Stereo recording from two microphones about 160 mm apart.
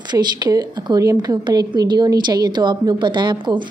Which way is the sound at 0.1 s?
25° right (ahead or behind).